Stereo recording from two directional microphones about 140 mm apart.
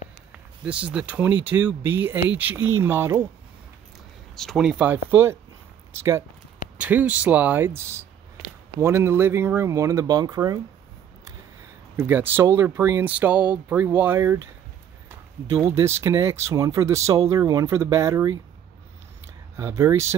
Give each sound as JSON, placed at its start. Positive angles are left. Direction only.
{"t": 0.7, "sound": "speech", "side_deg": -10}
{"t": 4.4, "sound": "speech", "side_deg": 0}
{"t": 12.0, "sound": "speech", "side_deg": -15}
{"t": 19.5, "sound": "speech", "side_deg": -20}